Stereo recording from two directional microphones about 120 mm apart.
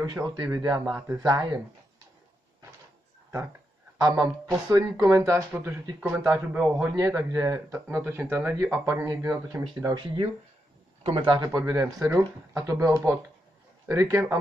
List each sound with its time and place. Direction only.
0.0 s speech: 35° right (ahead or behind)
4.0 s speech: 25° right (ahead or behind)
5.9 s a man's voice: 10° right (ahead or behind)
7.0 s speech: 25° right (ahead or behind)
11.1 s speech: 50° right (ahead or behind)
11.3 s speech: 30° right (ahead or behind)